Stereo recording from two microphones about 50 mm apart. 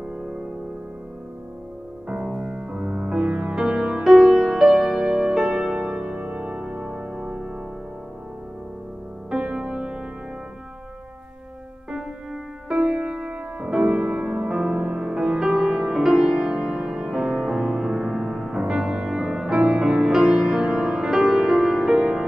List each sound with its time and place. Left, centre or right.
2.0 s music: centre
9.3 s music: centre
12.6 s music: centre
21.9 s music: centre